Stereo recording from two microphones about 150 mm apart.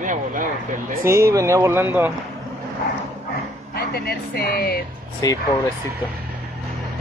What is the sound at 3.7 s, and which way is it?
Speech, 90° left.